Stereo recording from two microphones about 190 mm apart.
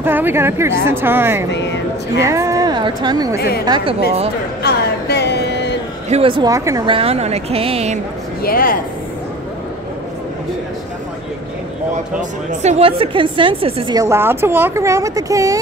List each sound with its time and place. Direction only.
0.0 s a woman's voice: 10° right (ahead or behind)
1.5 s speech: 65° left (ahead or behind)
2.2 s speech: 15° right (ahead or behind)
3.3 s a woman's voice: 55° left (ahead or behind)
3.6 s speech: 20° right (ahead or behind)
4.6 s a sound: 60° left (ahead or behind)
6.0 s speech: 30° right (ahead or behind)
7.0 s speech: 35° right (ahead or behind)
8.4 s speech: 50° left (ahead or behind)
12.2 s a woman's voice: 35° right (ahead or behind); by 15.6 s 15° right (ahead or behind)